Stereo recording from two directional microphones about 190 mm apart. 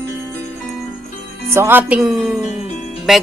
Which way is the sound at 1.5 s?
10° right (ahead or behind).